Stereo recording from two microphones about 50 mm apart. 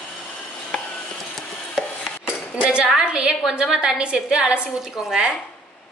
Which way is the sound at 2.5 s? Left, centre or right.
Centre.